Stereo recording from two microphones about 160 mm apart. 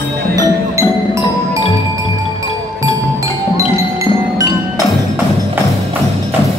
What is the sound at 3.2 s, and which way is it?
Music, 20° right (ahead or behind).